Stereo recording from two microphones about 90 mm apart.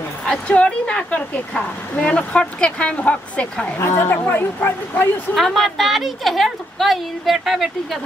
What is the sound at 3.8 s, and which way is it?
A woman's voice, 30° left (ahead or behind).